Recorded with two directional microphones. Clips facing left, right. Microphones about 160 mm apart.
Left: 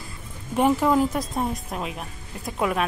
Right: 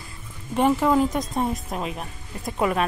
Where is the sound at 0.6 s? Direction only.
5° left (ahead or behind).